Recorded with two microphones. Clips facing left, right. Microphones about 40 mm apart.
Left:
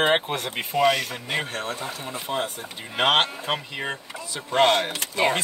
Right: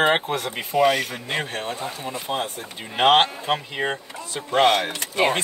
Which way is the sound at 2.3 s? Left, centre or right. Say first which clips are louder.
Right 1 dB; right.